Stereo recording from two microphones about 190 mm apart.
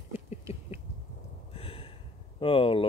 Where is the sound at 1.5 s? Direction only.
30° left (ahead or behind).